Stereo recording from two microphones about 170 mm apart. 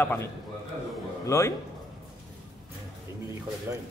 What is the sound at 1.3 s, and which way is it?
Speech, 15° left (ahead or behind).